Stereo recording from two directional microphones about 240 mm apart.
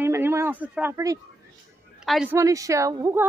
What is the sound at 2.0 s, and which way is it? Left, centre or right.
Speech, centre.